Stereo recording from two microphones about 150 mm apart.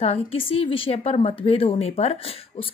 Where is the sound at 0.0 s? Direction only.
40° left (ahead or behind).